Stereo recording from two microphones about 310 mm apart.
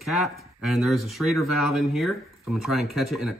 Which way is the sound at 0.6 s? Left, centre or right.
Centre.